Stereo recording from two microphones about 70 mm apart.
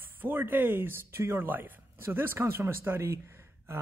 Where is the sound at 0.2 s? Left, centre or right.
Right.